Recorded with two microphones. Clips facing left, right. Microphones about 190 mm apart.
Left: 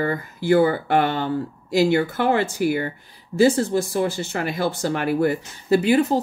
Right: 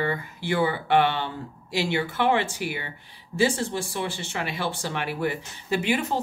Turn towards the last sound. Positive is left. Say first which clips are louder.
# left 8 dB
turn(degrees=35)  # may be behind; listen again after turning